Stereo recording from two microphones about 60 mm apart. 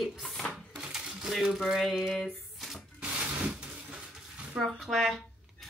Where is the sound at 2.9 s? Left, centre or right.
Right.